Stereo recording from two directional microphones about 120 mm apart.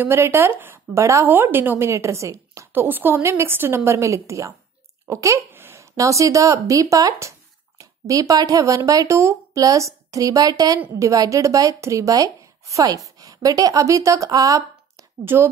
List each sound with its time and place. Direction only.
0.0 s a woman's voice: 20° right (ahead or behind)